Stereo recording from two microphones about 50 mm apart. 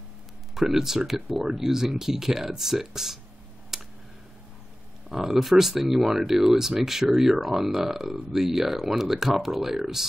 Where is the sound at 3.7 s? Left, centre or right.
Centre.